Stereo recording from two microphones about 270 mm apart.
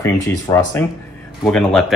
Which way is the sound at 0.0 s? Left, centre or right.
Centre.